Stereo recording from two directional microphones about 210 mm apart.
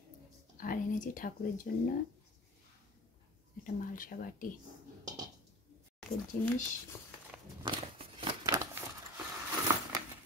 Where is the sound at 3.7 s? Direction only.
40° left (ahead or behind).